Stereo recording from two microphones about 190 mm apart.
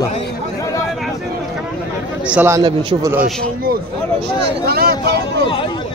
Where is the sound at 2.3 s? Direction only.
5° right (ahead or behind).